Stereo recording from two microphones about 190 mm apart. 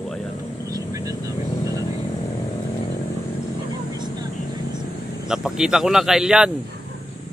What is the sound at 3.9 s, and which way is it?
Vehicle, 20° right (ahead or behind).